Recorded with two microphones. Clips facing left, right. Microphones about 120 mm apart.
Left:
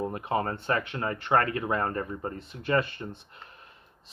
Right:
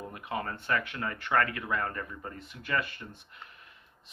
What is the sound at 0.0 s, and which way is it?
Speech, 35° left (ahead or behind).